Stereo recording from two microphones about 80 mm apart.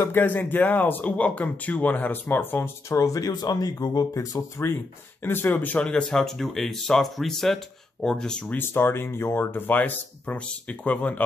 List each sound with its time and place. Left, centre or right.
0.0 s speech: left
2.9 s speech: left
5.2 s speech: left; by 8.5 s centre
8.5 s speech: left